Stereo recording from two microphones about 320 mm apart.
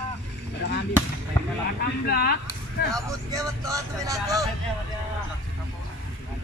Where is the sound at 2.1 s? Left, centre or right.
Left.